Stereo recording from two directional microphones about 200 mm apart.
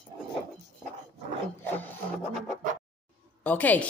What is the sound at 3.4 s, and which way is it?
Speech, 5° left (ahead or behind).